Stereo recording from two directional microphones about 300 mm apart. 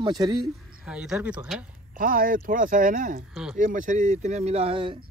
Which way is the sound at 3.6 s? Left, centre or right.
Right.